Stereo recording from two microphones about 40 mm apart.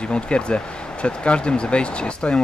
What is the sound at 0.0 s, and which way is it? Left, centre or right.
Speech, left.